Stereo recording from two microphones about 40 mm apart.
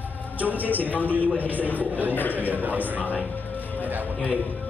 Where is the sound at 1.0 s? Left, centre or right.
Right.